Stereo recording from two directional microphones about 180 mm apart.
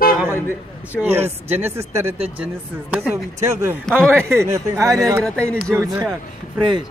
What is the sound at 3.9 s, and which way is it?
Speech, 5° left (ahead or behind).